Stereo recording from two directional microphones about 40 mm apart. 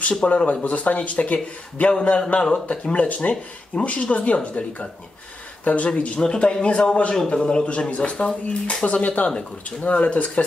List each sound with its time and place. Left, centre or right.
0.2 s a man's voice: left
5.9 s a man's voice: left